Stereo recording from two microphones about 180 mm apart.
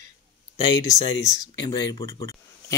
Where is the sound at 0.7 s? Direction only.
20° left (ahead or behind).